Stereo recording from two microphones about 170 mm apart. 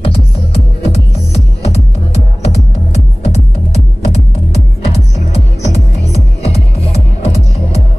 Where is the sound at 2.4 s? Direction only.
40° left (ahead or behind).